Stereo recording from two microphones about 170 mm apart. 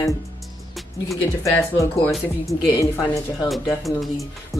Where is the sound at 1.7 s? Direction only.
15° left (ahead or behind).